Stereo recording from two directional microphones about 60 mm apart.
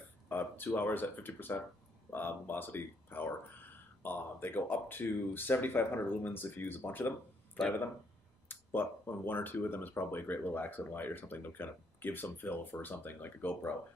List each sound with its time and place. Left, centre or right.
0.3 s speech: left
8.5 s speech: left